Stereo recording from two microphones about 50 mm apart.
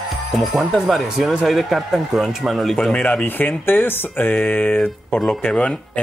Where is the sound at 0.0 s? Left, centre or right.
Centre.